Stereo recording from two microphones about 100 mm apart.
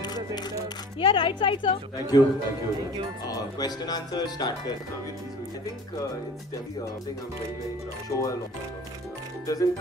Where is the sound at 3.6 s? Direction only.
45° left (ahead or behind).